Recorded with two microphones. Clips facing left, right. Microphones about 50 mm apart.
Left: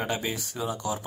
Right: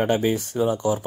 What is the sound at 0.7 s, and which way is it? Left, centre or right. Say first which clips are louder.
Speech: right 7 dB; right.